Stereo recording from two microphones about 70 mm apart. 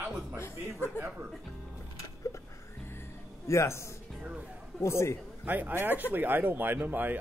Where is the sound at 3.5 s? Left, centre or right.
Left.